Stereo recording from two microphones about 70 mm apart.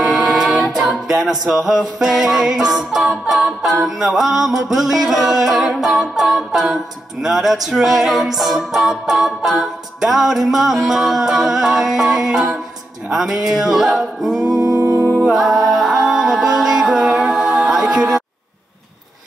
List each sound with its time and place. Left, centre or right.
1.0 s a capella: centre
14.7 s music: right
15.2 s a capella: centre
15.7 s music: centre